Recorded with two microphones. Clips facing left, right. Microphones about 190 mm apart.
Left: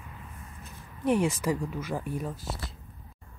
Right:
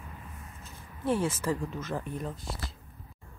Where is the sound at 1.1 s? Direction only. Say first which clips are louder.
Left 3 dB; 15° left (ahead or behind).